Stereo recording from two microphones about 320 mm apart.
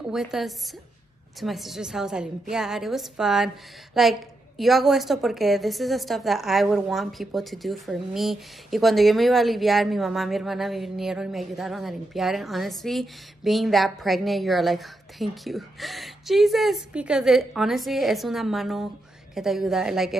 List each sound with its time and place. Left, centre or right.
0.0 s a woman's voice: centre